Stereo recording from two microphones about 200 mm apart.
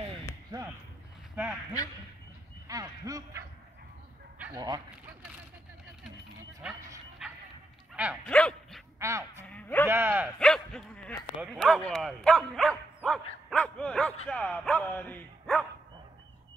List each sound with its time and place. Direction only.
1.3 s speech: 5° right (ahead or behind)
2.7 s honk: 15° right (ahead or behind)
4.6 s speech: 20° right (ahead or behind)
6.6 s bow-wow: 5° right (ahead or behind)
7.9 s dog: 5° right (ahead or behind)
8.3 s dog: 5° left (ahead or behind)
9.4 s a sound: 10° left (ahead or behind)
9.8 s a sound: 10° right (ahead or behind)
10.4 s dog: 5° left (ahead or behind)
11.4 s bow-wow: centre (ahead or behind)